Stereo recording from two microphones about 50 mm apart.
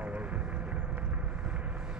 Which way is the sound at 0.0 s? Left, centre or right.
Right.